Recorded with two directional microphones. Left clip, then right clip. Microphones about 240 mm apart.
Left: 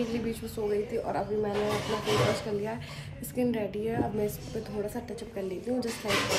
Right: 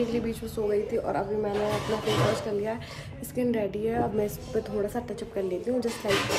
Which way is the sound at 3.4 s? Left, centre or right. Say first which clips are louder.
Right 3 dB; centre.